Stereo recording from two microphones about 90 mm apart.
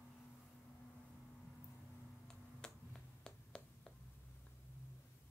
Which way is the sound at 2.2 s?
5° left (ahead or behind).